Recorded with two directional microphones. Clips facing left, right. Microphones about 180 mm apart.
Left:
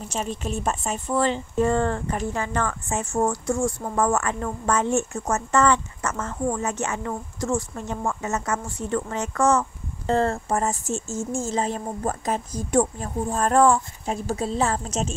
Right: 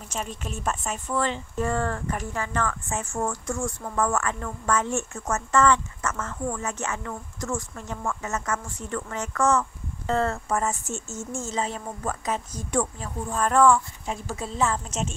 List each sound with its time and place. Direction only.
0.1 s speech: 35° left (ahead or behind)